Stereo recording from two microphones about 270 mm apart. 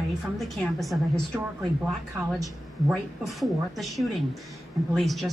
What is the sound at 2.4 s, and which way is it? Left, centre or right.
A woman's voice, centre.